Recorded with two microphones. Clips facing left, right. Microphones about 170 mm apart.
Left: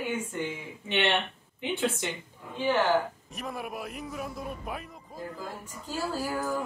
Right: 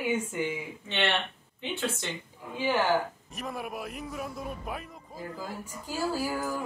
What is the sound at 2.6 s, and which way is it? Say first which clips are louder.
Speech: left 1 dB; 10° right (ahead or behind).